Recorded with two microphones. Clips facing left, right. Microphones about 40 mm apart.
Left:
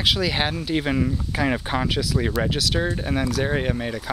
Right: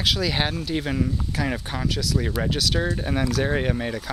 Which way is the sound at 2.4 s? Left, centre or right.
Centre.